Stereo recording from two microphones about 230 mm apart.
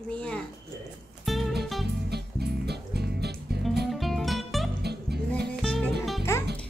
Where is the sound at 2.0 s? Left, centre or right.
Right.